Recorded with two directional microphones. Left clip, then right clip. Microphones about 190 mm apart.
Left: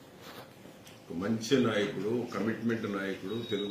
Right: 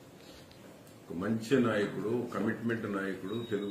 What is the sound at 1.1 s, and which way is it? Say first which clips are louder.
Speech: left 1 dB; centre (ahead or behind).